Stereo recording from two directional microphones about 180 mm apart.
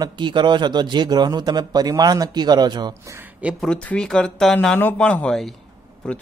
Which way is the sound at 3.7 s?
5° left (ahead or behind).